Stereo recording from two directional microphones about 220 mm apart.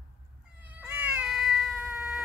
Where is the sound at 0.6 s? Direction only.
10° right (ahead or behind).